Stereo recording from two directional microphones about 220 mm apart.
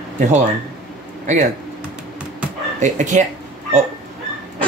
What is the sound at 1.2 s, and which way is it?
Speech, 35° right (ahead or behind).